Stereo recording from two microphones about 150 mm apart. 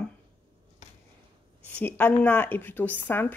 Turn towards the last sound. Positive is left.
turn(degrees=15)  # may be behind; listen again after turning